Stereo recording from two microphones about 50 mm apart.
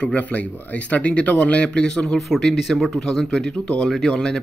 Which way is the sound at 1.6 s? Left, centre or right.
Centre.